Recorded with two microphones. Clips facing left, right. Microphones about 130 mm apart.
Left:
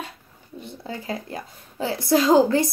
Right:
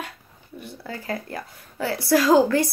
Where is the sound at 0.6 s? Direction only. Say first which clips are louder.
Left 1 dB; 20° left (ahead or behind).